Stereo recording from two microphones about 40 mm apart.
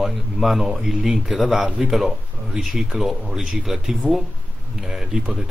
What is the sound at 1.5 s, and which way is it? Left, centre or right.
Speech, right.